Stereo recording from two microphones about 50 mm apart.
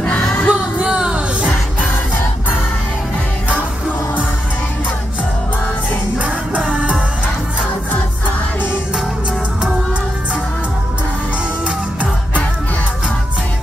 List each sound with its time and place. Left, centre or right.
0.0 s music: left
0.5 s music: centre
6.6 s music: centre